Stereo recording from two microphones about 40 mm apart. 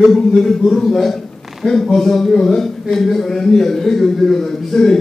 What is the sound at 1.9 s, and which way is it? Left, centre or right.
A man's voice, centre.